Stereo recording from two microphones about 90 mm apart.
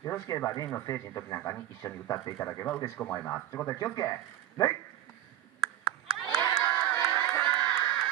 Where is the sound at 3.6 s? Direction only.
40° left (ahead or behind).